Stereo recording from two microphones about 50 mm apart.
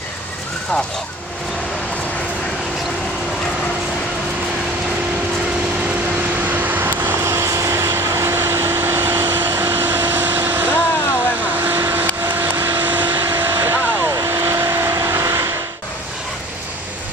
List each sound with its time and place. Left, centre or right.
6.4 s vehicle: right
7.2 s vehicle: right
9.5 s air conditioning: right
11.6 s vehicle: right
14.0 s vehicle: right